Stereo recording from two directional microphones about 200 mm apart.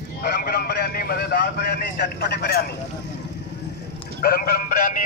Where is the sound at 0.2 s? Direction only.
50° left (ahead or behind).